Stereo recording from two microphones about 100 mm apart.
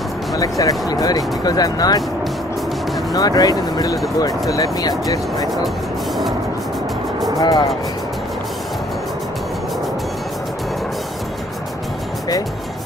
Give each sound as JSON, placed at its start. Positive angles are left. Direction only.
{"t": 0.4, "sound": "speech", "side_deg": 35}
{"t": 3.1, "sound": "speech", "side_deg": 40}
{"t": 7.3, "sound": "speech", "side_deg": 40}